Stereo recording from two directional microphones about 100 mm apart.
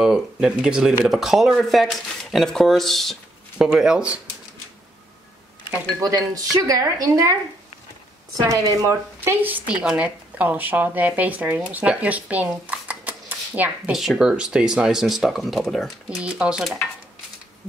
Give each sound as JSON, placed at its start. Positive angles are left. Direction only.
{"t": 0.0, "sound": "speech", "side_deg": -5}
{"t": 5.9, "sound": "speech", "side_deg": -35}
{"t": 8.4, "sound": "speech", "side_deg": -35}
{"t": 13.9, "sound": "speech", "side_deg": -5}
{"t": 16.2, "sound": "speech", "side_deg": -10}